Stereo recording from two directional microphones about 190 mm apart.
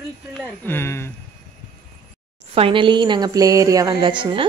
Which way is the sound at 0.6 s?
10° left (ahead or behind).